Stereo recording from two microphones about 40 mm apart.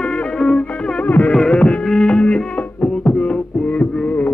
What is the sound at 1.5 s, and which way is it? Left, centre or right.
Music, left.